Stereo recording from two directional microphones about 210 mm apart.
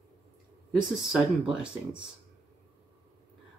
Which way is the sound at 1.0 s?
5° right (ahead or behind).